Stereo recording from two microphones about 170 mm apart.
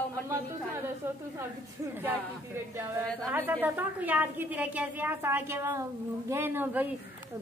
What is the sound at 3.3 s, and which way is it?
A woman's voice, 10° right (ahead or behind).